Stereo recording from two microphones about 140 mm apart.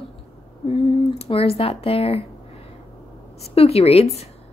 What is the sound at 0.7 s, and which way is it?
Speech, 45° left (ahead or behind).